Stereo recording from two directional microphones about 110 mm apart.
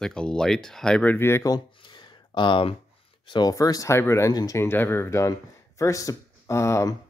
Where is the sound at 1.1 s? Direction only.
20° left (ahead or behind).